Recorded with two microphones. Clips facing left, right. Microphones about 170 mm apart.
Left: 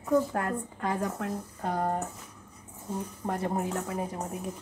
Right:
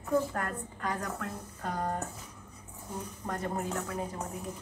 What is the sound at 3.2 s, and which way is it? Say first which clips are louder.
A woman's voice: left 4 dB; 25° left (ahead or behind).